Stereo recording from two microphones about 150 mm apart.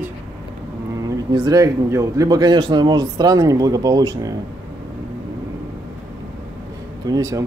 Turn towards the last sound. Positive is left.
turn(degrees=-25)  # may be behind; listen again after turning